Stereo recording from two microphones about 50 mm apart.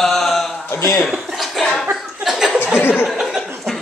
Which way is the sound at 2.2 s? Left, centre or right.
Centre.